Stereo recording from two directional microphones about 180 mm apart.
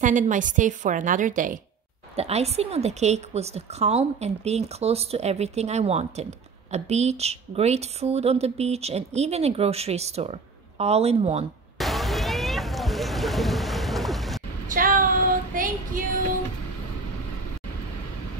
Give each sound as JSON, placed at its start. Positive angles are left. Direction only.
{"t": 0.0, "sound": "a woman's voice", "side_deg": -45}
{"t": 2.1, "sound": "a woman's voice", "side_deg": -35}
{"t": 11.8, "sound": "boat", "side_deg": 0}
{"t": 14.7, "sound": "a sound", "side_deg": -50}
{"t": 15.5, "sound": "female singing", "side_deg": -50}